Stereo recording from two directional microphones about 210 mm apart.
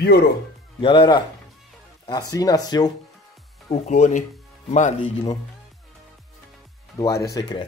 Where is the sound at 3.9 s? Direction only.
35° left (ahead or behind).